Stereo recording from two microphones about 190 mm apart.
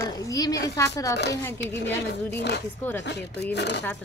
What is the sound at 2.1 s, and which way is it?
Speech, 60° left (ahead or behind).